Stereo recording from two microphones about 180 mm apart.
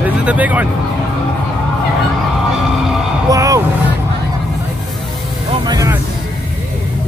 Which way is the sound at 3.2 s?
20° right (ahead or behind).